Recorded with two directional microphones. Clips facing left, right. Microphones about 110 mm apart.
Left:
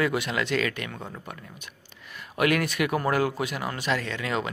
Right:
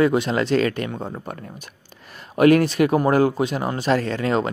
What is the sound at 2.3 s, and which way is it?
Speech, 35° right (ahead or behind).